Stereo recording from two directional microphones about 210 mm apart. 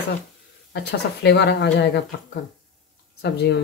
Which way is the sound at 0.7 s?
55° left (ahead or behind).